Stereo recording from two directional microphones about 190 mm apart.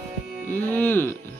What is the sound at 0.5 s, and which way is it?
Speech, 10° left (ahead or behind).